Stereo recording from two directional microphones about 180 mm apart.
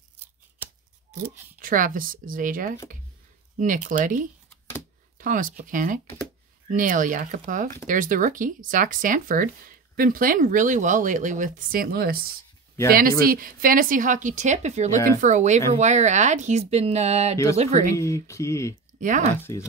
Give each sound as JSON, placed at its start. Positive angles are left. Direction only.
{"t": 1.6, "sound": "speech", "side_deg": -50}
{"t": 17.9, "sound": "speech", "side_deg": 15}
{"t": 18.9, "sound": "speech", "side_deg": -45}
{"t": 19.3, "sound": "speech", "side_deg": 10}